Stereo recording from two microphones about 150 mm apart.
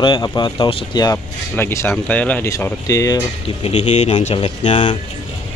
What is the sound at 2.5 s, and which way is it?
Speech, 20° left (ahead or behind).